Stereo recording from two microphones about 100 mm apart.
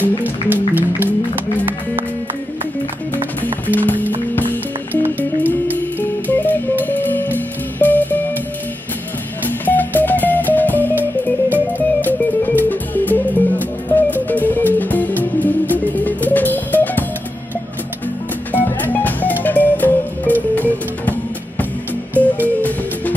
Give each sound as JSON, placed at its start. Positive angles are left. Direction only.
{"t": 0.2, "sound": "music", "side_deg": -15}
{"t": 3.6, "sound": "music", "side_deg": 15}
{"t": 5.9, "sound": "music", "side_deg": 20}
{"t": 9.5, "sound": "music", "side_deg": 20}
{"t": 18.5, "sound": "music", "side_deg": 20}
{"t": 22.1, "sound": "music", "side_deg": 15}